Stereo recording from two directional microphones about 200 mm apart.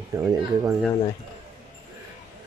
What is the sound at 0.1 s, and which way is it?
Speech, 15° right (ahead or behind).